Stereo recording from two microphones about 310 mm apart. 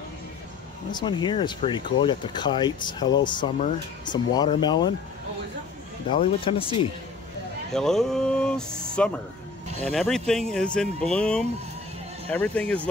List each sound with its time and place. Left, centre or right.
0.9 s speech: centre
6.0 s speech: centre
7.7 s speech: centre